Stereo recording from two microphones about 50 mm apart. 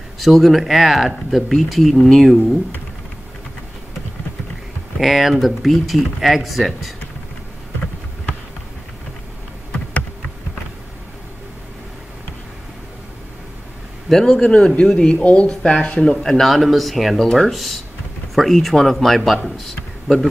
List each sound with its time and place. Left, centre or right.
0.2 s speech: centre
4.9 s speech: centre
14.0 s a man's voice: centre
14.4 s speech: left
15.1 s a man's voice: left; by 20.2 s centre